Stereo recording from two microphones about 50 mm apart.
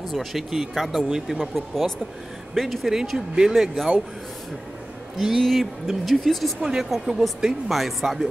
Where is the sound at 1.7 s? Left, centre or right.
Centre.